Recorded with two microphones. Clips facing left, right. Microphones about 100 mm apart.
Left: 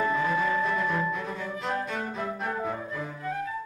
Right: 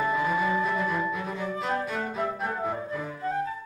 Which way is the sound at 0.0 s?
10° right (ahead or behind).